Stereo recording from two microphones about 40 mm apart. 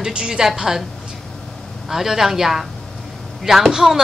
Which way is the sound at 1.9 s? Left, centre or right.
Centre.